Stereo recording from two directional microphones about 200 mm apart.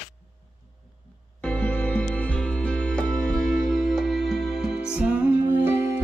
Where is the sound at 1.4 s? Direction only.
10° left (ahead or behind).